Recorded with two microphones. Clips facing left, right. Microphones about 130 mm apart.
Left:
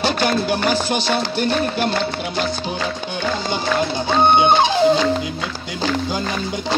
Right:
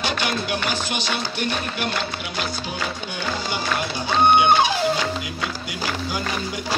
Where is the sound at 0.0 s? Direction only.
35° left (ahead or behind).